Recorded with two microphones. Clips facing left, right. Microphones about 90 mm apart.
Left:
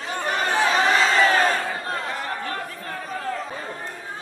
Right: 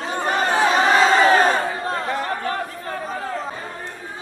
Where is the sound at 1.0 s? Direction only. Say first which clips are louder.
Right 4 dB; 40° right (ahead or behind).